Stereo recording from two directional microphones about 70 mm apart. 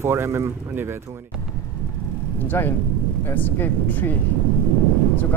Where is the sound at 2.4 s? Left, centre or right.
Left.